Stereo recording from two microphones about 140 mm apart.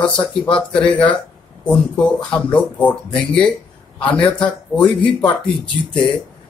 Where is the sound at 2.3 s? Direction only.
10° left (ahead or behind).